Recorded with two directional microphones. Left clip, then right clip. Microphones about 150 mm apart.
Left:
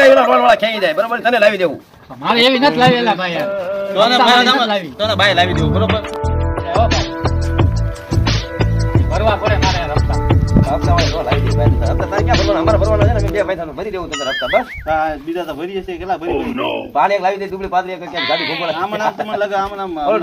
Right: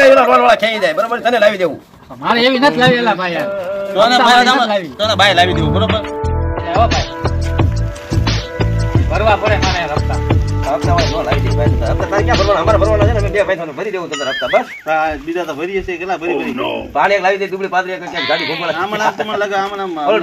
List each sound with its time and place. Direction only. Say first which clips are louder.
0.0 s a man's voice: right 1 dB; 5° right (ahead or behind)
2.2 s a man's voice: even; 20° left (ahead or behind)
3.9 s speech: right 2 dB; 5° left (ahead or behind)
6.7 s music: right 2 dB; centre (ahead or behind)
9.1 s music: right 3 dB; 55° left (ahead or behind)
9.4 s music: right 2 dB; centre (ahead or behind)
10.8 s speech: right 1 dB; centre (ahead or behind)
14.2 s speech: right 1 dB; centre (ahead or behind)
14.9 s speech: right 1 dB; 30° left (ahead or behind)
16.3 s speech: right 2 dB; centre (ahead or behind)
16.9 s speech: right 2 dB; 10° left (ahead or behind)
19.3 s speech: right 1 dB; 30° left (ahead or behind)